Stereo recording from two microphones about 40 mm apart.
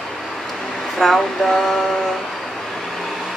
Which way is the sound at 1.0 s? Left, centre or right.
Centre.